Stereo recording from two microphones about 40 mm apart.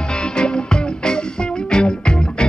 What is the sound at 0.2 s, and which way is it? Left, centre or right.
Music, left.